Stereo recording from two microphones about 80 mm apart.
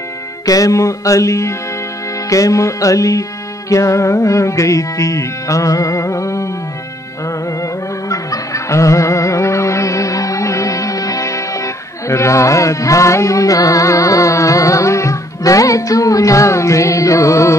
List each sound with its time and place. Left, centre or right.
0.5 s music: left
8.1 s music: left